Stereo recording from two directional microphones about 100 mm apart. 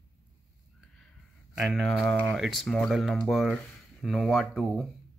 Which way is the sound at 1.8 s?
5° left (ahead or behind).